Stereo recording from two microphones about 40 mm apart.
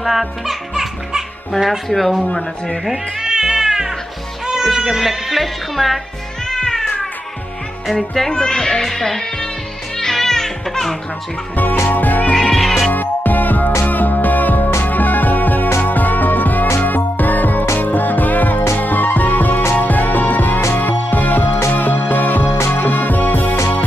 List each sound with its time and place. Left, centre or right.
0.0 s speech: centre
2.3 s speech: centre
2.8 s speech: centre
3.3 s cat: centre
4.8 s speech: centre
6.4 s cat: centre
8.0 s speech: centre
9.9 s music: centre
11.9 s music: left
12.4 s music: centre
12.9 s music: left